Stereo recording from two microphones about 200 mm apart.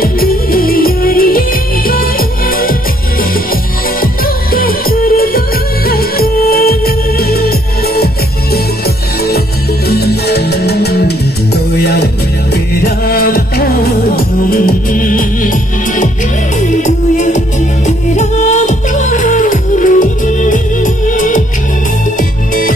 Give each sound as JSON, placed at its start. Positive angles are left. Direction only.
{"t": 0.0, "sound": "music", "side_deg": 45}
{"t": 4.0, "sound": "music", "side_deg": 45}
{"t": 9.8, "sound": "music", "side_deg": 50}